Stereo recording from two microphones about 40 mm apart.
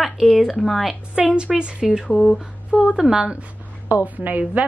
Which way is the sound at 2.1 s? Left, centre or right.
Left.